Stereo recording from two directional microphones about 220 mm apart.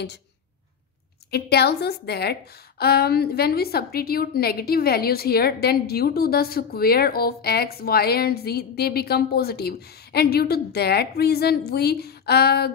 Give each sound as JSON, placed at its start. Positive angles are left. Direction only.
{"t": 1.3, "sound": "a woman's voice", "side_deg": 45}